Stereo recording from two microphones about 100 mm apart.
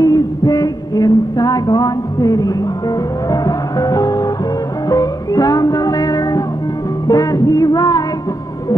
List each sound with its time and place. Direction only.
0.0 s music: 40° left (ahead or behind)